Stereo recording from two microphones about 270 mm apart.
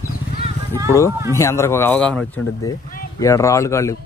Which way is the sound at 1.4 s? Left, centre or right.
Centre.